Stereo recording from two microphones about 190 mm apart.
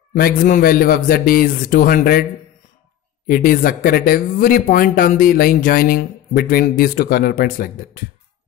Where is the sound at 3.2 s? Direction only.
50° left (ahead or behind).